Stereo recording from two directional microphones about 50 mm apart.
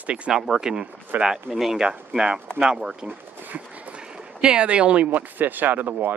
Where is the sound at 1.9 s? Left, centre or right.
Centre.